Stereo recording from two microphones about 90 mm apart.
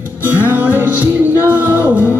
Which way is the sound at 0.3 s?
20° right (ahead or behind).